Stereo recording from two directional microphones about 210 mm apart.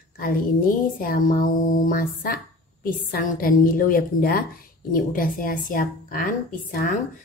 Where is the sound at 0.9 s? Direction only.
40° left (ahead or behind).